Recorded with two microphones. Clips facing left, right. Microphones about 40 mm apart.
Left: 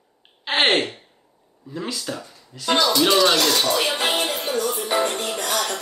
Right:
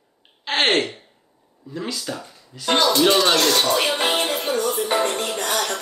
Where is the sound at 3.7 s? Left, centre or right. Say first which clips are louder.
Right 1 dB; right.